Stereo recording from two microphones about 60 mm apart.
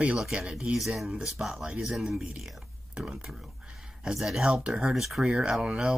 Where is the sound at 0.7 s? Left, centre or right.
Centre.